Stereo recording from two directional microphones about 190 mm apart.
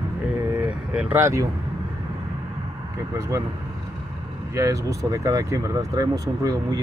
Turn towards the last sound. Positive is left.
turn(degrees=-20)  # may be behind; listen again after turning